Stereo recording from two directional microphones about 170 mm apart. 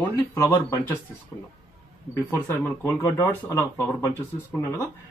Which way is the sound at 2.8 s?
15° left (ahead or behind).